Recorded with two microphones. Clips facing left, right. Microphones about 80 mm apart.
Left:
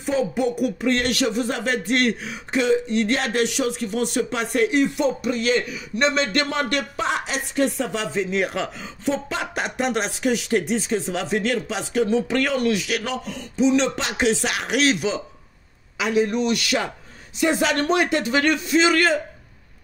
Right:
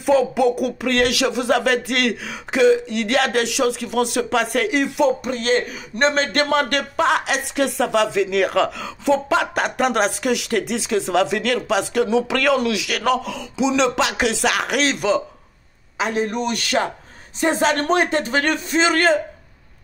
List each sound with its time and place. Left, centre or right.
0.0 s speech: right
5.2 s a man's voice: right
12.9 s speech: right
14.8 s a man's voice: right